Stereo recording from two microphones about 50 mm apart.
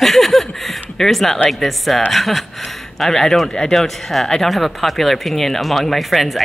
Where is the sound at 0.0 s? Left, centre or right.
Centre.